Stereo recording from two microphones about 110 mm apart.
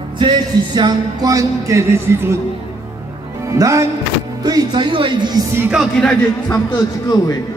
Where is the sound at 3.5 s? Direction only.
30° right (ahead or behind).